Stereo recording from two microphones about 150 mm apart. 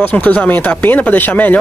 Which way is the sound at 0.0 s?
10° left (ahead or behind).